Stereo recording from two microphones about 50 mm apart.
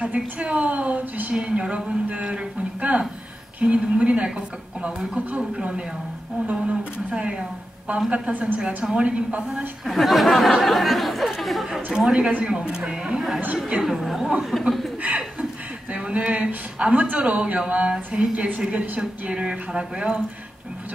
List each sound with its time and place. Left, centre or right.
0.0 s speech: right
1.3 s a woman's voice: centre
9.8 s speech: centre
12.1 s speech: right; by 14.7 s centre
15.0 s chuckle: right
15.9 s speech: right